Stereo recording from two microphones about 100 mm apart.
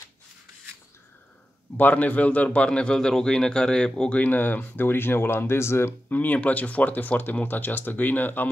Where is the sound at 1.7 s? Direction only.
15° left (ahead or behind).